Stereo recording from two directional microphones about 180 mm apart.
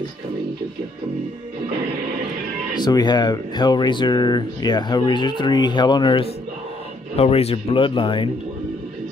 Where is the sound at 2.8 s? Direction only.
20° left (ahead or behind).